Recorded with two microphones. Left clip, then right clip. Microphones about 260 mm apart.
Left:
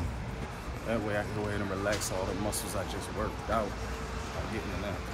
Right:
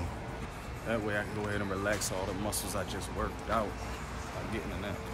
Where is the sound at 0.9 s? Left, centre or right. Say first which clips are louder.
Left 1 dB; centre.